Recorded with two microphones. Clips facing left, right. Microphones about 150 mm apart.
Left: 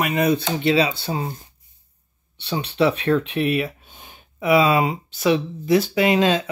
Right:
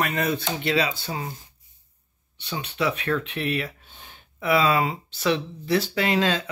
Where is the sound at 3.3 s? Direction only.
15° left (ahead or behind).